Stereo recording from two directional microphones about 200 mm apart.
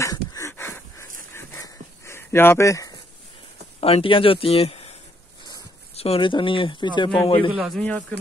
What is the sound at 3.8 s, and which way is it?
Speech, 25° left (ahead or behind).